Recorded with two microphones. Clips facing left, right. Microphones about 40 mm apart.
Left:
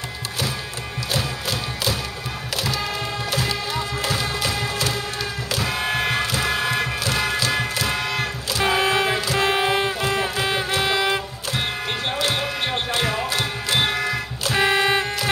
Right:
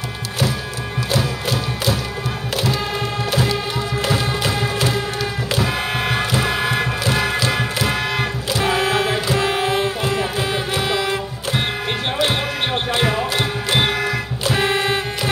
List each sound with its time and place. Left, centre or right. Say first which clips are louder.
1.1 s music: right 4 dB; right
5.5 s music: right 1 dB; centre
8.6 s a sound: even; centre
9.4 s music: right 1 dB; centre
12.2 s music: right 4 dB; right
13.8 s music: right 3 dB; centre